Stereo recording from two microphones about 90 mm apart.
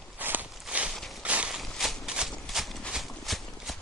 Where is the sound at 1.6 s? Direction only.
Centre (ahead or behind).